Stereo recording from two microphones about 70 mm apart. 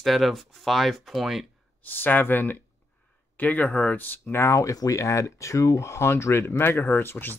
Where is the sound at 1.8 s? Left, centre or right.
Left.